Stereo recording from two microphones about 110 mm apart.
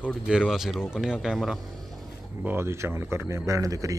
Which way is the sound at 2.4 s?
25° right (ahead or behind).